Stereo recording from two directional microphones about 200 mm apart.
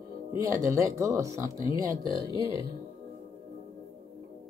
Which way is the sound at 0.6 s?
15° right (ahead or behind).